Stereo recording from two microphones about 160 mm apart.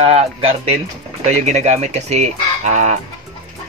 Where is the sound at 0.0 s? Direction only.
35° right (ahead or behind).